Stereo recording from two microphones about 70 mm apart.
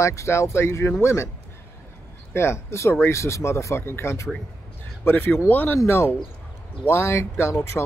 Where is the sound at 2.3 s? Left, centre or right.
Left.